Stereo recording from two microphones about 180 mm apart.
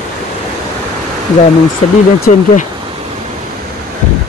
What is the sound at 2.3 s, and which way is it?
Speech, 45° left (ahead or behind).